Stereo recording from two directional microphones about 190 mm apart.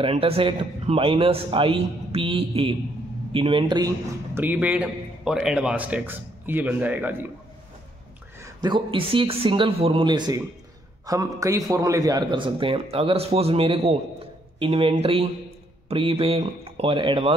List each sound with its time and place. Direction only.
0.0 s a man's voice: 30° right (ahead or behind)
4.4 s a man's voice: 10° right (ahead or behind)
8.4 s a man's voice: 20° right (ahead or behind)